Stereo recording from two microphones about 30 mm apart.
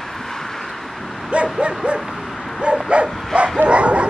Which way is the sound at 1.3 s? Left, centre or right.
Right.